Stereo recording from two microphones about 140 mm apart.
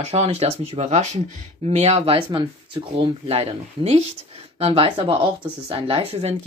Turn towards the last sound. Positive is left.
turn(degrees=-50)  # may be behind; listen again after turning